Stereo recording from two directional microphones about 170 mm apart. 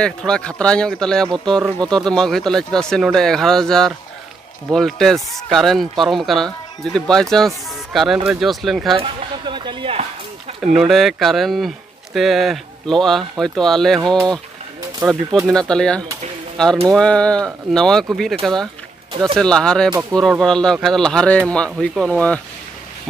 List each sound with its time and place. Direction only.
0.0 s speech: 5° left (ahead or behind)
8.9 s a sound: 30° right (ahead or behind)
10.8 s speech: centre (ahead or behind)
15.0 s speech: 20° right (ahead or behind)
15.7 s speech: 5° left (ahead or behind)